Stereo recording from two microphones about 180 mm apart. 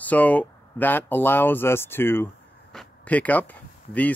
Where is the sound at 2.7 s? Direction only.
5° left (ahead or behind).